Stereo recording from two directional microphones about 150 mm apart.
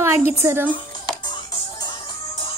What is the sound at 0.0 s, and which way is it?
Speech, 15° right (ahead or behind).